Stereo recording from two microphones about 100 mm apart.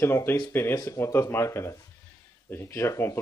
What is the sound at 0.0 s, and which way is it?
Speech, 25° left (ahead or behind).